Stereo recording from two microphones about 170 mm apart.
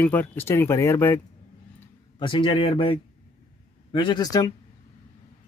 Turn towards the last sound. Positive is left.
turn(degrees=25)  # may be behind; listen again after turning